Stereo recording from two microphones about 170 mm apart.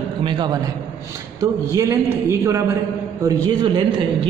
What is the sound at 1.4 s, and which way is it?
A man's voice, 20° right (ahead or behind).